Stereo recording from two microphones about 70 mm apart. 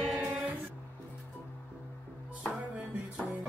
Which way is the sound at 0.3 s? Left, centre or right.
Right.